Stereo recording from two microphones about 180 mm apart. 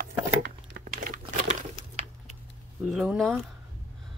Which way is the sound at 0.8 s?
45° right (ahead or behind).